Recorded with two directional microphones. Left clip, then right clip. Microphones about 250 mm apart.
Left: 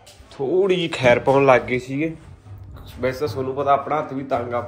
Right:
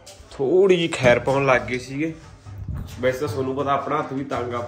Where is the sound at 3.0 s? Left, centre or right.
Centre.